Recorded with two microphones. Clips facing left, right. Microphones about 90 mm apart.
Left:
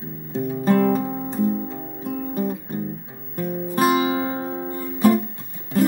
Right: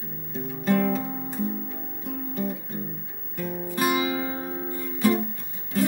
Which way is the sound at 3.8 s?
30° left (ahead or behind).